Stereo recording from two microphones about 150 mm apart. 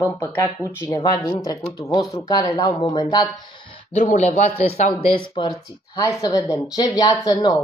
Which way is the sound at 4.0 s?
55° left (ahead or behind).